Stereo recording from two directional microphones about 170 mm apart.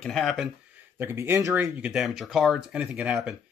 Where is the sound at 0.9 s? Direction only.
15° right (ahead or behind).